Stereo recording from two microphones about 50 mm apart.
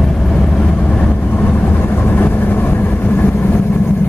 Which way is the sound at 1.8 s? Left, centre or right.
Left.